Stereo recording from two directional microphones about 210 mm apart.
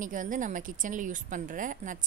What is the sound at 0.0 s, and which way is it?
A woman's voice, 40° right (ahead or behind).